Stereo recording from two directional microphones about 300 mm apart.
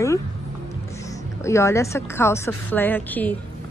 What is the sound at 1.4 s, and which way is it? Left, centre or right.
Speech, centre.